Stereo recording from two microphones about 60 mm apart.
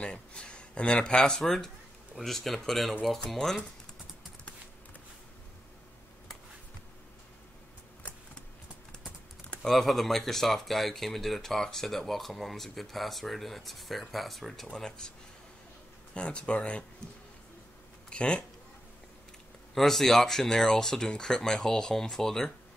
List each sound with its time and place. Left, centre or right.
0.0 s a sound: centre
1.4 s speech: centre
9.6 s speech: centre
16.2 s speech: centre
18.1 s speech: centre
19.7 s speech: centre